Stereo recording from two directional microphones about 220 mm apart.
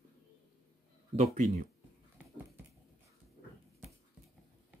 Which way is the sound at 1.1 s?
30° right (ahead or behind).